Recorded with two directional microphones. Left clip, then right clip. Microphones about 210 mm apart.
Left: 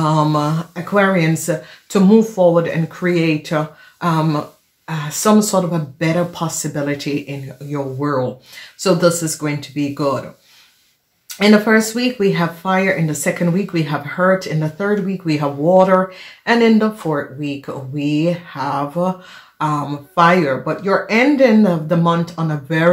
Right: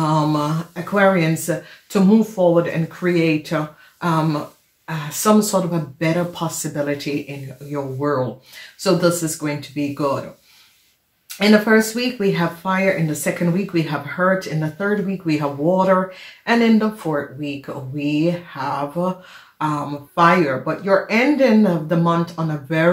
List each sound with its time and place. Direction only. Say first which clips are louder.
0.0 s speech: left 3 dB; 40° left (ahead or behind)
11.2 s speech: left 2 dB; 40° left (ahead or behind)